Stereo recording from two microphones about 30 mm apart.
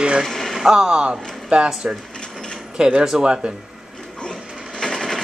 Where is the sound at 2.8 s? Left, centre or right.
Right.